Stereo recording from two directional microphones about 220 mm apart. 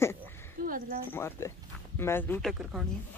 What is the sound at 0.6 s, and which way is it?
Speech, 40° right (ahead or behind).